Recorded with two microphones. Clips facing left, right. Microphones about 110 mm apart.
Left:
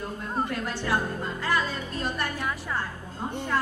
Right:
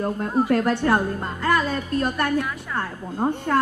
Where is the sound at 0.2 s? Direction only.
55° right (ahead or behind).